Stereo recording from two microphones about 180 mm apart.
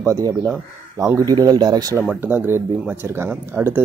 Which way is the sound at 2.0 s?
10° right (ahead or behind).